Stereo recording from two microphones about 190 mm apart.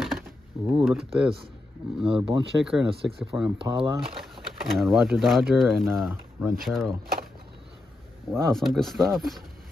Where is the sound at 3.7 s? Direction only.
25° right (ahead or behind).